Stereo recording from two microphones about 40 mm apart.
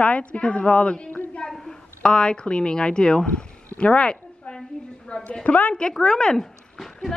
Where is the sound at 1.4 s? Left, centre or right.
Centre.